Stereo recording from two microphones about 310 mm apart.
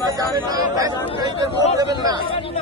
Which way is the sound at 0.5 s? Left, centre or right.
Centre.